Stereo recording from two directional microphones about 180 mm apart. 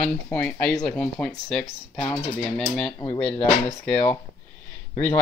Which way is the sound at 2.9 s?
15° left (ahead or behind).